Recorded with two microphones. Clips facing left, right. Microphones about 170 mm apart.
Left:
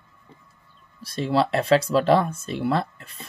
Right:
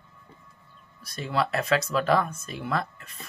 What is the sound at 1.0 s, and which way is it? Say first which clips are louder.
Speech: left 6 dB; 30° left (ahead or behind).